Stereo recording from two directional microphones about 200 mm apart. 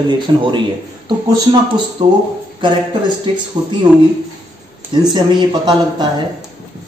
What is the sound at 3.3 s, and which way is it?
Speech, 25° right (ahead or behind).